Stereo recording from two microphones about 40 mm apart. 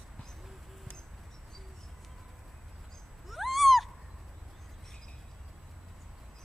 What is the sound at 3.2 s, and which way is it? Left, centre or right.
Cat, centre.